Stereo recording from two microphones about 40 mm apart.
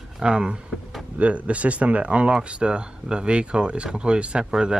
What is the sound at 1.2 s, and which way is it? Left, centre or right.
Speech, right.